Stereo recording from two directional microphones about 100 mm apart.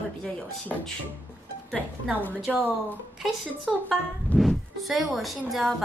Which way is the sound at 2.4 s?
15° right (ahead or behind).